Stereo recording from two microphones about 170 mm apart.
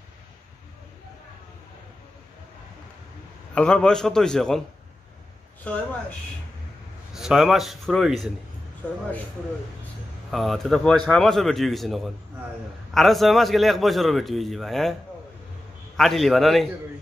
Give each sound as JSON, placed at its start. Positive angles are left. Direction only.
{"t": 3.5, "sound": "a man's voice", "side_deg": 5}
{"t": 5.7, "sound": "a woman's voice", "side_deg": 5}
{"t": 7.2, "sound": "a man's voice", "side_deg": -5}
{"t": 10.3, "sound": "a man's voice", "side_deg": 0}
{"t": 16.0, "sound": "a man's voice", "side_deg": 0}